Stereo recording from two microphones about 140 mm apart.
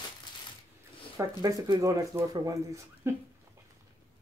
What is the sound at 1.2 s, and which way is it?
Speech, 25° right (ahead or behind).